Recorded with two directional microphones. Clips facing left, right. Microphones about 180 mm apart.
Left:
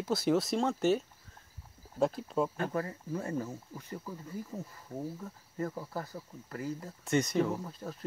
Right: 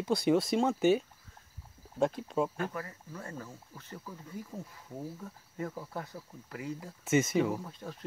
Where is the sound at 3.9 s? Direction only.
10° left (ahead or behind).